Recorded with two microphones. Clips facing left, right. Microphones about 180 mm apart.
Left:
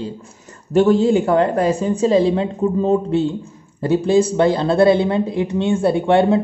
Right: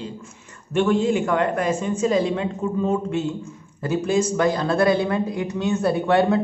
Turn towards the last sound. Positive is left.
turn(degrees=25)  # may be behind; listen again after turning